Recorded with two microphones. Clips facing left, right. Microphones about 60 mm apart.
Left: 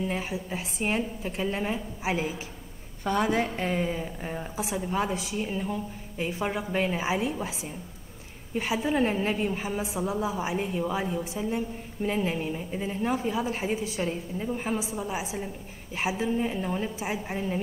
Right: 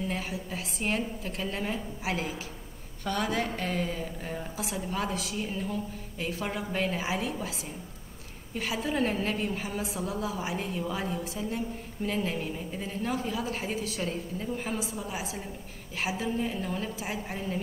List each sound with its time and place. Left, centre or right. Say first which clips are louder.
0.0 s a woman's voice: left 3 dB; centre
8.5 s a woman's voice: left 4 dB; left